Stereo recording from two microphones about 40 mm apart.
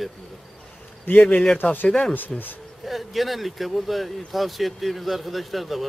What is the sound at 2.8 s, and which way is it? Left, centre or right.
Speech, centre.